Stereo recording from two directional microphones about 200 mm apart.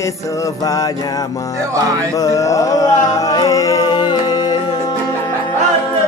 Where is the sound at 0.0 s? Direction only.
15° left (ahead or behind).